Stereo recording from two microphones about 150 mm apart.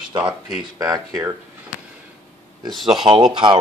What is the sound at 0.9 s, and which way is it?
Speech, 20° right (ahead or behind).